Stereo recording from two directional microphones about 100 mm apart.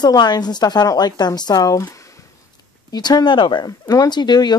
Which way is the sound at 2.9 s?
40° left (ahead or behind).